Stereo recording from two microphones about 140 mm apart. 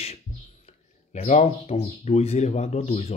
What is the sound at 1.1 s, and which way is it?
Speech, 50° left (ahead or behind).